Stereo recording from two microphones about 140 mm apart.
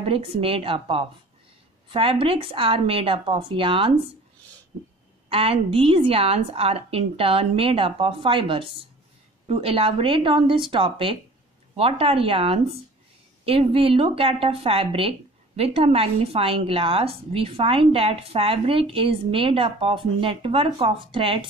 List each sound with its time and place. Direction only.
0.0 s speech: 40° right (ahead or behind)
5.3 s speech: 45° right (ahead or behind)